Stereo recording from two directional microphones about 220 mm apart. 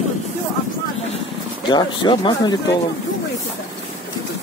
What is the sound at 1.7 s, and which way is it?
Speech, 20° left (ahead or behind).